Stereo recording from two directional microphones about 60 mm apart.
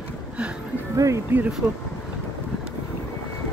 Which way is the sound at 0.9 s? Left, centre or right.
Right.